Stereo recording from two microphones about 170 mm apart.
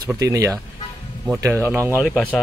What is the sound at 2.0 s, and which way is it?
Speech, centre (ahead or behind).